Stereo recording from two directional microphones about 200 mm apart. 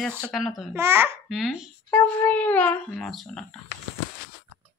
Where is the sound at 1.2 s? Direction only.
Centre (ahead or behind).